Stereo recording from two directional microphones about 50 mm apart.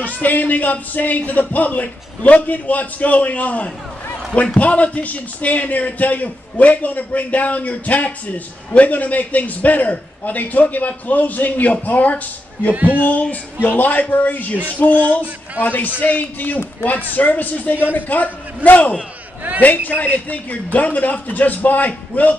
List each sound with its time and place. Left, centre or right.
0.0 s a man's voice: left
12.7 s speech: right
13.0 s a man's voice: left
15.0 s speech: right
15.6 s a man's voice: left